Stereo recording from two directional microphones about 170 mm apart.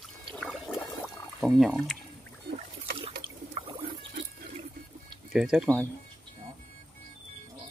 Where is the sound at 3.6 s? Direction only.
30° right (ahead or behind).